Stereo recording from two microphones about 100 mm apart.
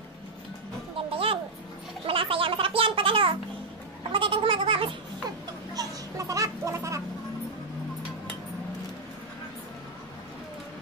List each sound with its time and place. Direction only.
0.9 s music: 65° right (ahead or behind)
2.0 s a sound: 65° right (ahead or behind)
5.8 s children playing: 35° right (ahead or behind)